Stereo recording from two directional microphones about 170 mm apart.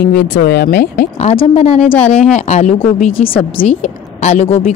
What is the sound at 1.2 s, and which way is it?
Speech, 40° left (ahead or behind).